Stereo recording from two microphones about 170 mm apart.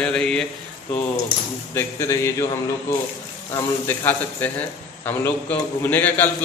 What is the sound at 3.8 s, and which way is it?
A man's voice, 10° left (ahead or behind).